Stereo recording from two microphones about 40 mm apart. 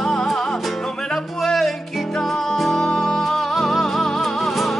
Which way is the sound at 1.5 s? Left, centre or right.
Centre.